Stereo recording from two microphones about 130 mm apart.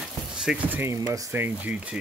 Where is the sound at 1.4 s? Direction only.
15° right (ahead or behind).